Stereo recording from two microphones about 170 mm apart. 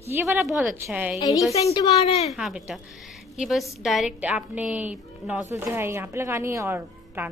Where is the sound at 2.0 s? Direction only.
35° left (ahead or behind).